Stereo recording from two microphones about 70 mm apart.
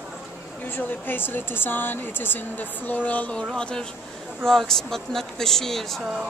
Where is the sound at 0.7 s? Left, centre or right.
Left; by 6.0 s centre.